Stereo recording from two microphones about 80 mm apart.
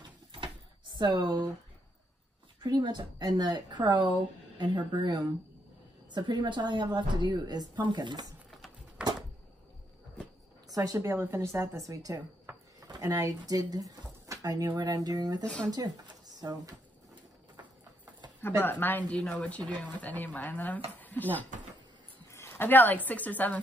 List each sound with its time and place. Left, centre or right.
0.9 s a woman's voice: right
2.6 s a woman's voice: right
8.5 s a sound: centre
10.7 s speech: right
11.1 s a woman's voice: right
14.7 s a woman's voice: right
15.4 s speech: centre
16.3 s speech: right
18.4 s speech: left
22.3 s a sound: left
23.0 s speech: left